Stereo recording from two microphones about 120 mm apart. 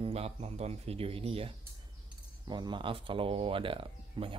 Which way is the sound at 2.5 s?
40° right (ahead or behind).